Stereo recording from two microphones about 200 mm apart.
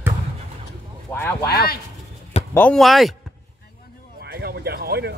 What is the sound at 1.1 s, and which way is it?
Speech, 10° left (ahead or behind).